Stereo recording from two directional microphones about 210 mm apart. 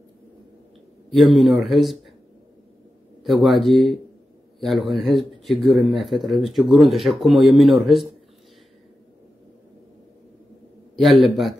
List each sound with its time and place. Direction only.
1.1 s speech: centre (ahead or behind)
3.3 s speech: centre (ahead or behind)
5.5 s speech: 25° left (ahead or behind)
5.8 s speech: centre (ahead or behind)
11.0 s speech: centre (ahead or behind)